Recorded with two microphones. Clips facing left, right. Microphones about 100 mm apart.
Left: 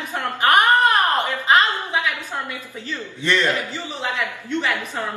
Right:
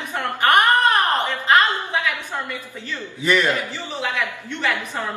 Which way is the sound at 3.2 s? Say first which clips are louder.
Right 1 dB; 10° right (ahead or behind).